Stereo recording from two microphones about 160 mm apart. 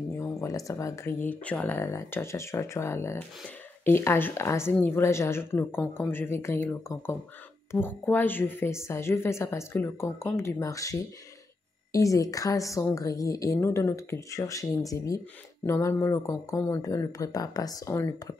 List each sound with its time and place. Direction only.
0.2 s a woman's voice: 20° left (ahead or behind)